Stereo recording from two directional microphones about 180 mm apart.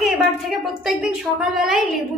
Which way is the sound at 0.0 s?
Centre (ahead or behind).